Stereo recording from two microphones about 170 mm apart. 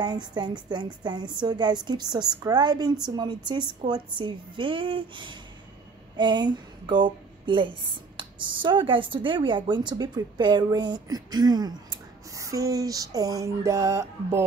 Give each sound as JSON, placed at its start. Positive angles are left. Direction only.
{"t": 0.0, "sound": "a woman's voice", "side_deg": -25}